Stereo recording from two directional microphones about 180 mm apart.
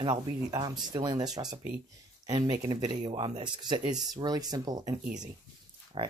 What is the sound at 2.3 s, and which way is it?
Speech, 25° right (ahead or behind).